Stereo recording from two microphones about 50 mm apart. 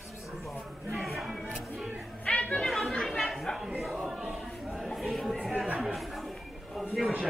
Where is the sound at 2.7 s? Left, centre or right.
Centre.